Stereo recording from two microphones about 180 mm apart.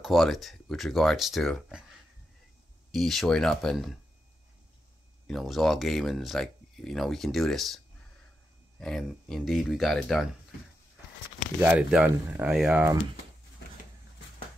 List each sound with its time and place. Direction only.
0.0 s speech: centre (ahead or behind)
2.9 s speech: centre (ahead or behind)
5.2 s speech: centre (ahead or behind)
11.6 s speech: 5° right (ahead or behind)